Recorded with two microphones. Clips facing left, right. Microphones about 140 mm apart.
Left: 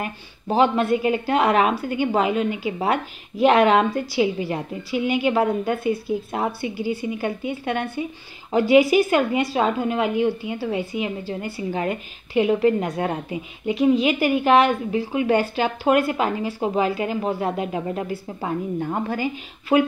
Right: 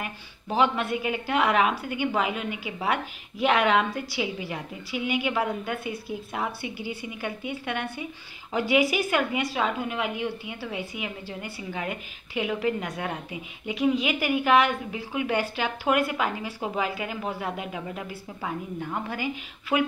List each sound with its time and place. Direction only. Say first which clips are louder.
0.0 s a woman's voice: left 6 dB; 35° left (ahead or behind)